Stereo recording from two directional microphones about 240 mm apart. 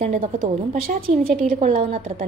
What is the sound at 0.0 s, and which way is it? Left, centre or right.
A woman's voice, right.